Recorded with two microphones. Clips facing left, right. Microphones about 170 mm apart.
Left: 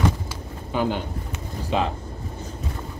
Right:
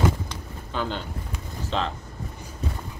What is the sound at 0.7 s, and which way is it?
Speech, 10° left (ahead or behind).